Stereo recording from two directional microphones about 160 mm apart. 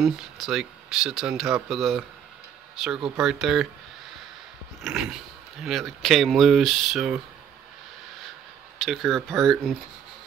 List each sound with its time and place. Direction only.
0.0 s speech: centre (ahead or behind)
4.8 s speech: 5° right (ahead or behind)
8.7 s speech: centre (ahead or behind)